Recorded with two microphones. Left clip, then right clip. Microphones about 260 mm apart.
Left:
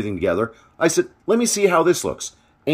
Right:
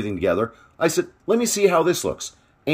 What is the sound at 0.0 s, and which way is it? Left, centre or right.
A man's voice, centre.